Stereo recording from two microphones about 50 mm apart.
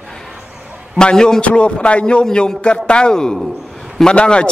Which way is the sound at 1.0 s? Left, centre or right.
Centre.